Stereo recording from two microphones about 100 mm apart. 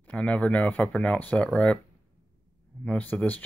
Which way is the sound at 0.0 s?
15° left (ahead or behind).